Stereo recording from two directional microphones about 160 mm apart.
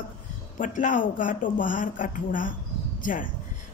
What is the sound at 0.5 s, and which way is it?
A woman's voice, 55° left (ahead or behind).